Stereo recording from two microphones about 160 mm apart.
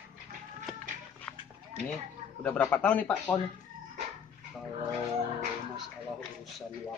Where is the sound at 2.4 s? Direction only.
10° left (ahead or behind).